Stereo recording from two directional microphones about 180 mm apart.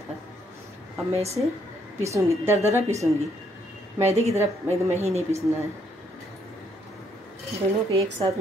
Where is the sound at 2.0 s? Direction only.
15° right (ahead or behind).